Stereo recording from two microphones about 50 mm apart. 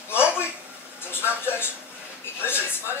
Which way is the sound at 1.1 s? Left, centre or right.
Left.